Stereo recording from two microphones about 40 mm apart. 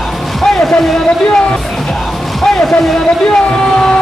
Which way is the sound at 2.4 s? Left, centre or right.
Centre.